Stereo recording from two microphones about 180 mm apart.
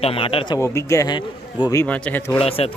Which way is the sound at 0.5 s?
15° left (ahead or behind).